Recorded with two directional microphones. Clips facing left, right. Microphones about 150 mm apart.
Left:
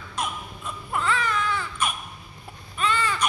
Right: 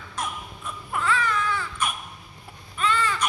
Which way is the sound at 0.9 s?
20° left (ahead or behind).